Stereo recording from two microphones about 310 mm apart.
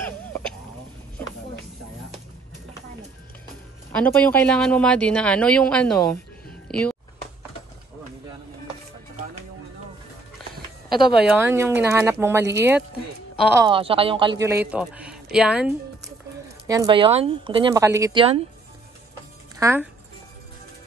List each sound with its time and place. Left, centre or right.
0.0 s hiccup: centre
3.9 s speech: centre
6.7 s a sound: centre
11.1 s speech: centre
13.7 s speech: centre
19.6 s speech: centre